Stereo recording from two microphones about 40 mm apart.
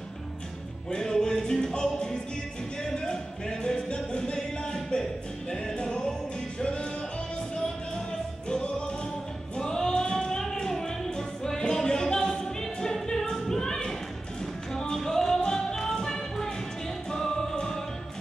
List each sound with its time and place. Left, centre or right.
0.8 s music: centre
8.5 s music: left
12.8 s choir: centre
14.4 s music: centre